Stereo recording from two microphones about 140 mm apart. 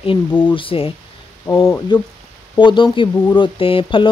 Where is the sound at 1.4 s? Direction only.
20° left (ahead or behind).